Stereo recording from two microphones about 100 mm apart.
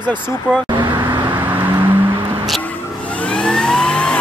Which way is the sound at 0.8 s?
50° right (ahead or behind).